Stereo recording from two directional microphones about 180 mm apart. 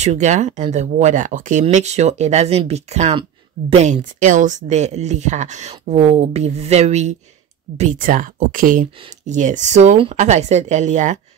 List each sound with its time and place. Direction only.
0.0 s speech: 40° right (ahead or behind)